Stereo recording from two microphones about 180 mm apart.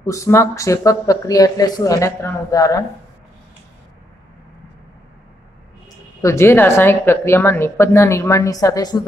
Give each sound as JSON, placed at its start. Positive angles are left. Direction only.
{"t": 0.0, "sound": "speech", "side_deg": 15}
{"t": 6.2, "sound": "speech", "side_deg": 15}